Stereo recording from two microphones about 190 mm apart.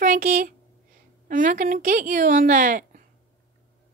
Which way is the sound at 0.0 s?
45° right (ahead or behind).